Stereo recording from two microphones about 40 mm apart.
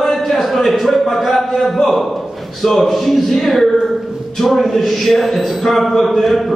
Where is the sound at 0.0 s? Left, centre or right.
Centre.